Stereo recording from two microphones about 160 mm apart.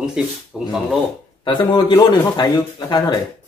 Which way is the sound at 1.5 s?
30° left (ahead or behind).